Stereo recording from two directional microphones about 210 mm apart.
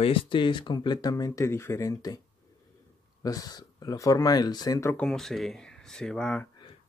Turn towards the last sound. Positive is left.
turn(degrees=5)  # may be behind; listen again after turning